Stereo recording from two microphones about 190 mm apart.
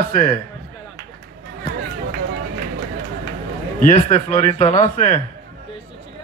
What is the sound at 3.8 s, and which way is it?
A man's voice, 40° left (ahead or behind).